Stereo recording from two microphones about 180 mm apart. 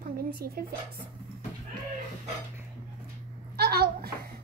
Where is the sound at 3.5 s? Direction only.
60° right (ahead or behind).